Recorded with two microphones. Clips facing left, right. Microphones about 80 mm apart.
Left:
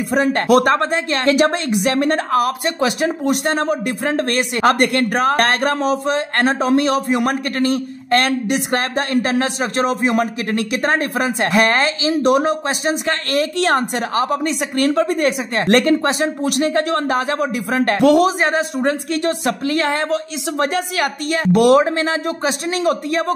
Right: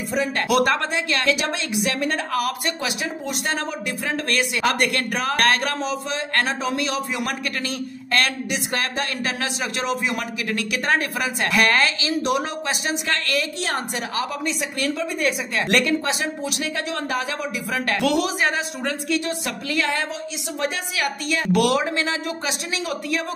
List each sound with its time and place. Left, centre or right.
0.1 s a woman's voice: left
2.3 s a man's voice: left
3.3 s a man's voice: left
13.6 s a woman's voice: left
20.1 s a man's voice: left